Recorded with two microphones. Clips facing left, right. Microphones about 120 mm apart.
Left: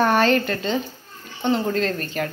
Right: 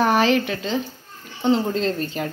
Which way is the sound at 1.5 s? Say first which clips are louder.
Right 1 dB; 20° right (ahead or behind).